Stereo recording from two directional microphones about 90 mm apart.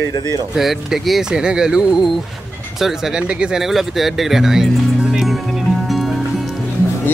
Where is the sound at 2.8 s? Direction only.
5° right (ahead or behind).